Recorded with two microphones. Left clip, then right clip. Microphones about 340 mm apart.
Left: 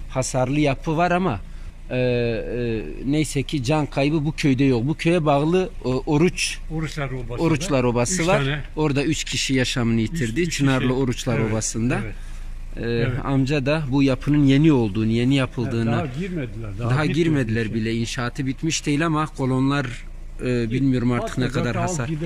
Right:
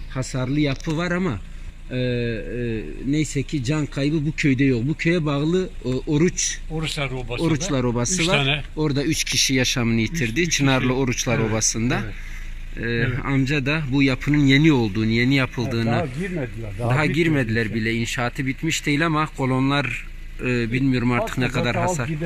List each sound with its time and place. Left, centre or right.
0.1 s speech: centre
2.3 s speech: left
2.7 s speech: centre